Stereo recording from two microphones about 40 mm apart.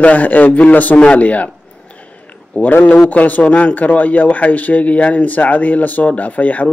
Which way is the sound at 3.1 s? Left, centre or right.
Left.